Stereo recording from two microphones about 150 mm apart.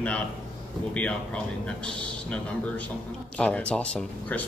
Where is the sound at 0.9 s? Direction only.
10° left (ahead or behind).